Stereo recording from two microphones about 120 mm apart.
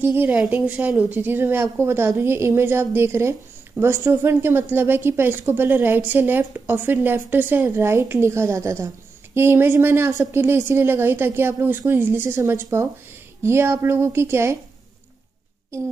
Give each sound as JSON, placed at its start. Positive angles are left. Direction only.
{"t": 0.0, "sound": "a woman's voice", "side_deg": -15}